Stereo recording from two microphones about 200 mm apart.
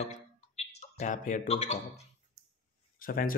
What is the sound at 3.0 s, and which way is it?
Speech, 45° left (ahead or behind).